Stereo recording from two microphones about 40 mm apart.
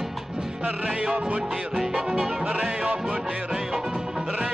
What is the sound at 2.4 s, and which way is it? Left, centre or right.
Music, right.